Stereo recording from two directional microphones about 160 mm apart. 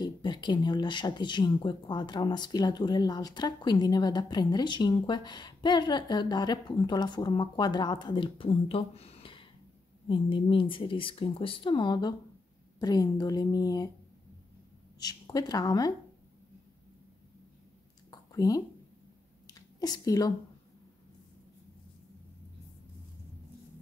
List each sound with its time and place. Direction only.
0.0 s speech: 30° left (ahead or behind)
15.0 s speech: 25° left (ahead or behind)
18.3 s speech: 25° left (ahead or behind)
19.4 s a sound: 25° left (ahead or behind)